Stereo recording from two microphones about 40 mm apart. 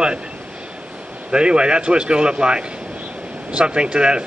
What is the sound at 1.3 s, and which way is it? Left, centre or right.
Speech, right.